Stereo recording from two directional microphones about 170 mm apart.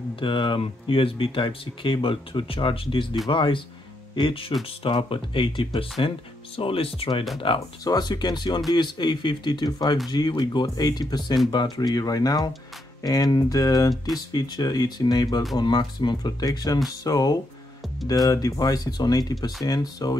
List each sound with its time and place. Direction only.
0.2 s speech: 30° left (ahead or behind)